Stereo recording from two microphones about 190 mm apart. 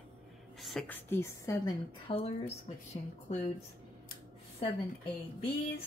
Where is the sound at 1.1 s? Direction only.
15° left (ahead or behind).